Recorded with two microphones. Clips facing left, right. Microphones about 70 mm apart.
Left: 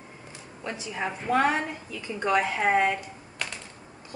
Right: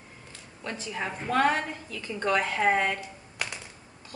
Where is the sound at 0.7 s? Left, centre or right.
Centre.